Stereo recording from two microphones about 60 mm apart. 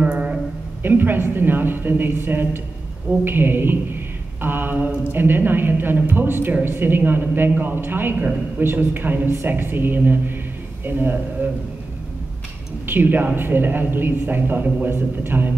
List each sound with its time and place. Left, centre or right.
0.0 s a sound: right
0.8 s speech: right
12.8 s speech: right